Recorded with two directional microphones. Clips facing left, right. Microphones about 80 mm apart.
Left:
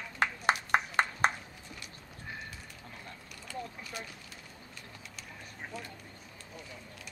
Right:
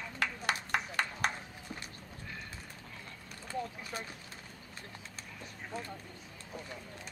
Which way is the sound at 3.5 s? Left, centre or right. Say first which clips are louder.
Right 3 dB; right.